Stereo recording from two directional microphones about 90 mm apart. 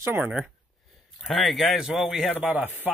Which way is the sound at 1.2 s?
Centre (ahead or behind).